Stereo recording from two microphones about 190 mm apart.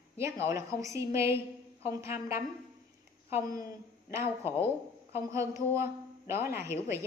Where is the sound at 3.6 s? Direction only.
15° right (ahead or behind).